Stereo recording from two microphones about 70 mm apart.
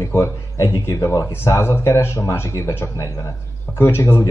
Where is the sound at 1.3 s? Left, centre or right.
Left.